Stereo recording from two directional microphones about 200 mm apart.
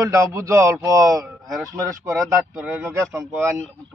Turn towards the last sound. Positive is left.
turn(degrees=-10)  # may be behind; listen again after turning